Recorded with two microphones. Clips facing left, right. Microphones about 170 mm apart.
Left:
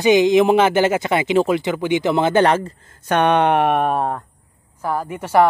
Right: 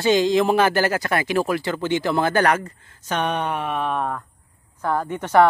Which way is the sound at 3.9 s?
35° left (ahead or behind).